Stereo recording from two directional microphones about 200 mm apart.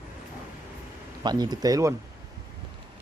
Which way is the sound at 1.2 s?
20° right (ahead or behind).